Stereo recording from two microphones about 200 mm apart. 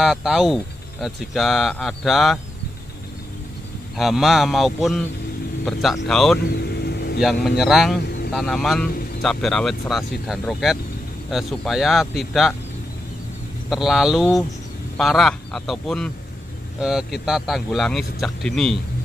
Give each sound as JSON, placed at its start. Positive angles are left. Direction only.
{"t": 0.0, "sound": "speech", "side_deg": 0}
{"t": 3.9, "sound": "speech", "side_deg": 0}
{"t": 6.5, "sound": "vehicle", "side_deg": 55}
{"t": 7.2, "sound": "speech", "side_deg": 0}
{"t": 13.7, "sound": "speech", "side_deg": 0}